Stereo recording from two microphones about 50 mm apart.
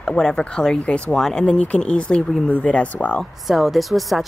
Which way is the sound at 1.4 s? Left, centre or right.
Left.